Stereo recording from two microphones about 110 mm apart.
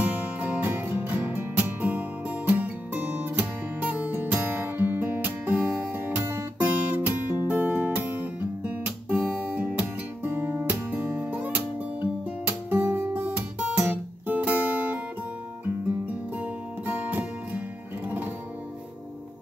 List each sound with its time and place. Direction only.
0.0 s music: 15° right (ahead or behind)
12.4 s guitar: 15° right (ahead or behind)
16.3 s music: 15° right (ahead or behind)